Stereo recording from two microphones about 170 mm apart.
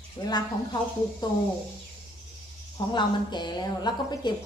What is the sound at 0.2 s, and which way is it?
A woman's voice, 20° left (ahead or behind).